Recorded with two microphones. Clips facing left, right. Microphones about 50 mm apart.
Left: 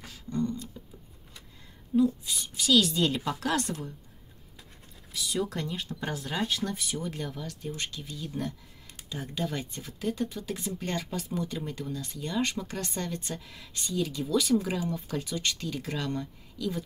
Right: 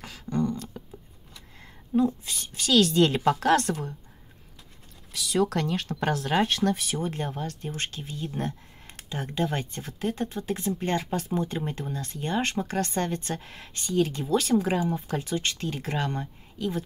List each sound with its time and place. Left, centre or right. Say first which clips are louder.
0.0 s a sound: right 3 dB; right
1.6 s a woman's voice: right 1 dB; right
5.1 s speech: right 6 dB; right
7.0 s speech: right 5 dB; right
8.1 s speech: right 4 dB; right
8.4 s a sound: right 3 dB; right
9.3 s speech: right 5 dB; right